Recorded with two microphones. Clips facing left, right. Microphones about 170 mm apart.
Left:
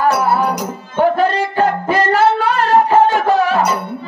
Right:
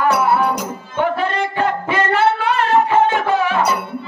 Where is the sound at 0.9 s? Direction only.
40° left (ahead or behind).